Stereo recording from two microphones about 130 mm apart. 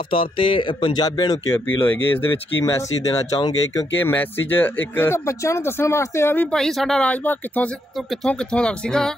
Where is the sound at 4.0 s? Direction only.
15° left (ahead or behind).